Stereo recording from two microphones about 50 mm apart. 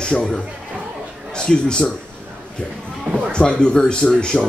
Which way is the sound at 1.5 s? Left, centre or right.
Centre.